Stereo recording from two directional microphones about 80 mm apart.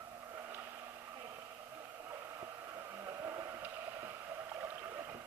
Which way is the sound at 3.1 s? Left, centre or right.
Right.